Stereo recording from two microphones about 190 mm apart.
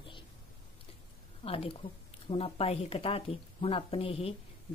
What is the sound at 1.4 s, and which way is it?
Speech, 30° left (ahead or behind).